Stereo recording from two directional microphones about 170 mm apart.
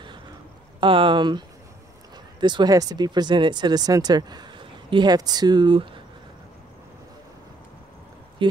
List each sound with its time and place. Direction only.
0.7 s speech: 30° right (ahead or behind)
2.4 s speech: 25° right (ahead or behind)
8.4 s a sound: 30° right (ahead or behind)